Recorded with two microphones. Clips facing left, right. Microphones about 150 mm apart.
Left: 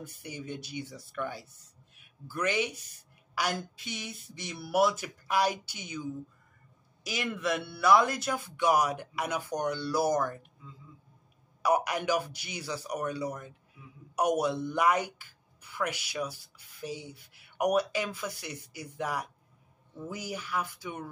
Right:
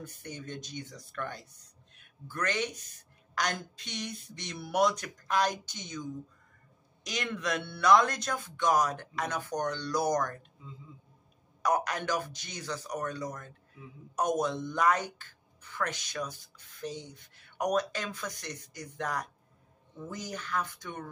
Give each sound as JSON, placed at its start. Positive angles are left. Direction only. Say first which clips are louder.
{"t": 0.0, "sound": "a woman's voice", "louder": "left 1 dB", "side_deg": 10}
{"t": 10.6, "sound": "a man's voice", "louder": "right 2 dB", "side_deg": -20}
{"t": 11.6, "sound": "a woman's voice", "louder": "left 2 dB", "side_deg": 10}